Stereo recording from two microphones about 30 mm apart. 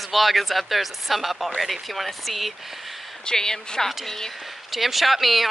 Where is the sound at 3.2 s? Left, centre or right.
Left.